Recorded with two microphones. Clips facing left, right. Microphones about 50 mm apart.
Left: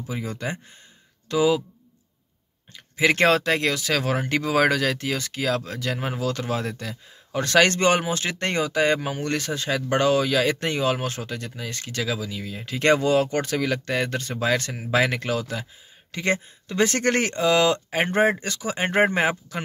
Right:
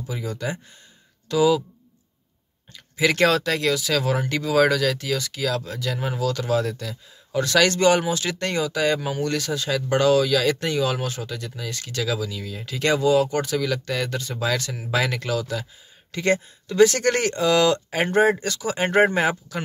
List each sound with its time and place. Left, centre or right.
0.0 s speech: left
2.7 s speech: left
16.1 s speech: centre
16.6 s speech: left